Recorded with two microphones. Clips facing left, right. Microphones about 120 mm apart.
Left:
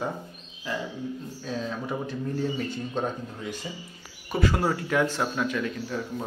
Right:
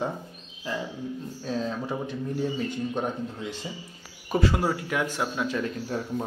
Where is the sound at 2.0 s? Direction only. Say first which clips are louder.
Even; 15° right (ahead or behind).